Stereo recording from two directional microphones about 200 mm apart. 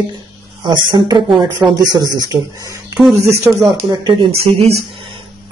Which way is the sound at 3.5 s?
5° right (ahead or behind).